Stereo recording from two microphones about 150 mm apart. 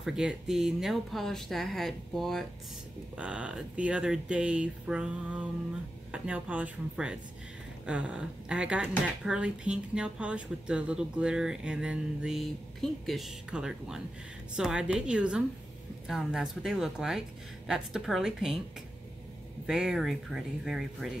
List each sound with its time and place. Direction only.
0.0 s speech: 5° right (ahead or behind)
19.6 s speech: 5° right (ahead or behind)